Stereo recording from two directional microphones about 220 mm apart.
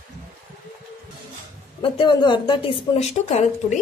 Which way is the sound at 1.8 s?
25° left (ahead or behind).